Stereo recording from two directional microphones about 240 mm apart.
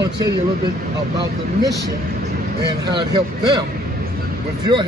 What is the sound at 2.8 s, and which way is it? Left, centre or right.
Speech, centre.